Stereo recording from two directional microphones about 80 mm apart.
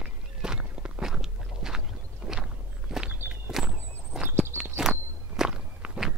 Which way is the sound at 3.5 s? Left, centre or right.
Centre.